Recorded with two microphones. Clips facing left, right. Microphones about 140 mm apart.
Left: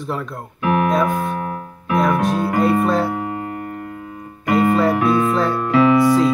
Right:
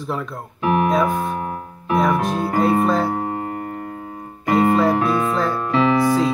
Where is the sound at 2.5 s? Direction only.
Centre (ahead or behind).